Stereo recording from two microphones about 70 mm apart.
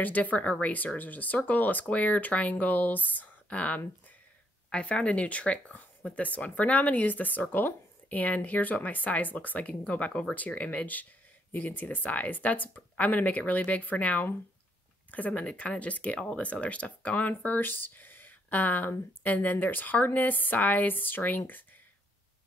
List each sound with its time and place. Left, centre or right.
0.0 s speech: left